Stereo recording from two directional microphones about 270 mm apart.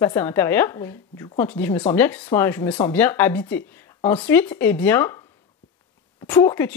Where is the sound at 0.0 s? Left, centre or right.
Centre.